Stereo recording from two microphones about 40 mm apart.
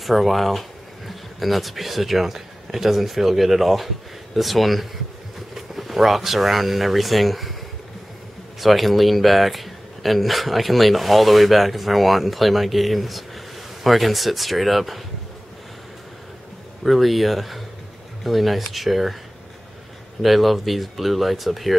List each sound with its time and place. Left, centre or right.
0.0 s a man's voice: centre
8.5 s a man's voice: centre
16.8 s a man's voice: centre
20.2 s a man's voice: centre